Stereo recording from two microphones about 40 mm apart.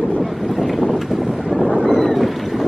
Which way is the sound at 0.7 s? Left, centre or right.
Centre.